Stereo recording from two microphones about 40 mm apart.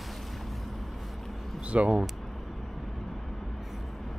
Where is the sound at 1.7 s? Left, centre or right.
Right.